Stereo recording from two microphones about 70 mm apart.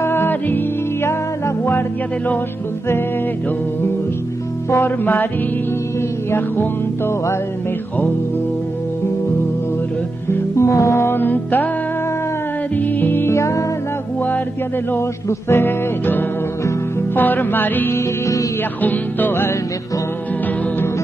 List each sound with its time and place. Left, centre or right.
0.0 s music: left
4.6 s music: left
6.3 s music: left
10.3 s music: left
12.7 s music: left
13.4 s music: left
14.9 s music: left